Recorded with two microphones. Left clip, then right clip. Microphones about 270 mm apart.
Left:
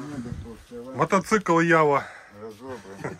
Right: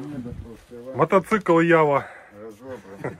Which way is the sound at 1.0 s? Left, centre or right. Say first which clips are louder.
Right 3 dB; centre.